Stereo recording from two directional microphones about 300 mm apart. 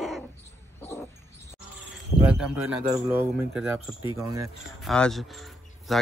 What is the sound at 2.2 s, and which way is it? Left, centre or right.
Speech, centre.